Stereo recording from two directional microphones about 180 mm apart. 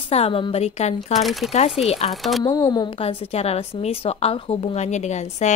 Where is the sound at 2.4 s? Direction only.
20° left (ahead or behind); by 5.5 s 40° left (ahead or behind).